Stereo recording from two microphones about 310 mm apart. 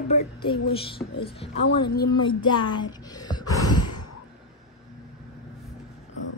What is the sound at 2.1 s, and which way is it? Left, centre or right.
Child singing, centre.